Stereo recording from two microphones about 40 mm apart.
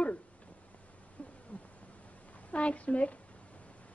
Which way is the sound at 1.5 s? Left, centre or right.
Left.